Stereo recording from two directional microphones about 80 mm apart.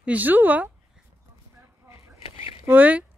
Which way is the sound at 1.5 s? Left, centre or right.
Right.